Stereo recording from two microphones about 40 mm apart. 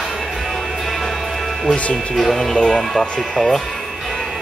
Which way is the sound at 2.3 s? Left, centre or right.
Centre.